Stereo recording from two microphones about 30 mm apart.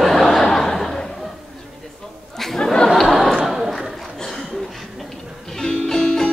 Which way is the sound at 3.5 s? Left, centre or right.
Centre.